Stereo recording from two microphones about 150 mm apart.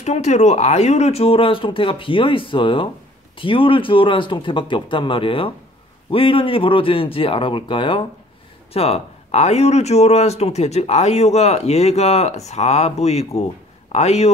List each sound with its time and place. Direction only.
0.0 s speech: 50° left (ahead or behind)